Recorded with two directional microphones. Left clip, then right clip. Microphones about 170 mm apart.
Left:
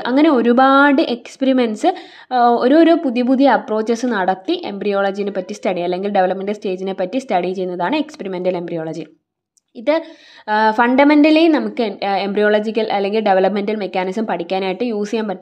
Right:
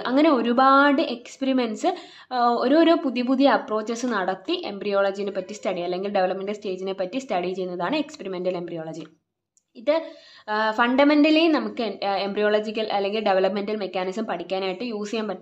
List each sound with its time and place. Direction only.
0.0 s a woman's voice: 30° left (ahead or behind)